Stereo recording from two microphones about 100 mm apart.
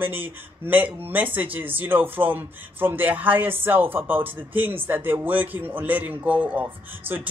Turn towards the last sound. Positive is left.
turn(degrees=-20)  # may be behind; listen again after turning